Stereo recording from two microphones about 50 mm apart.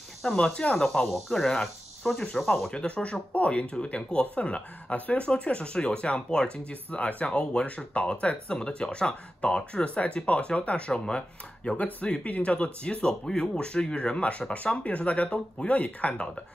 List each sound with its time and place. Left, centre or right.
0.3 s speech: left
0.7 s speech: centre
2.7 s speech: left